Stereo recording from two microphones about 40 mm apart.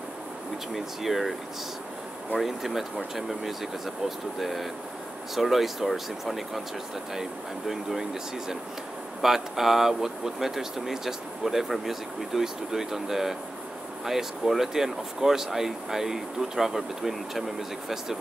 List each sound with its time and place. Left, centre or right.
0.7 s speech: centre
2.3 s speech: centre